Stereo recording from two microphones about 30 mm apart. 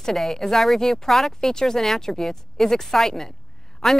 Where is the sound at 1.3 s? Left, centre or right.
Centre.